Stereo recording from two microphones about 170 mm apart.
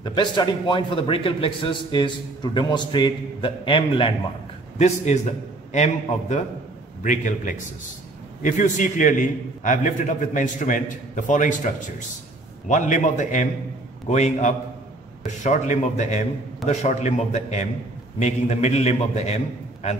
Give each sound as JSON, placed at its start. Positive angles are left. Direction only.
{"t": 0.0, "sound": "a man's voice", "side_deg": 25}
{"t": 4.7, "sound": "a man's voice", "side_deg": 40}
{"t": 12.6, "sound": "a man's voice", "side_deg": 45}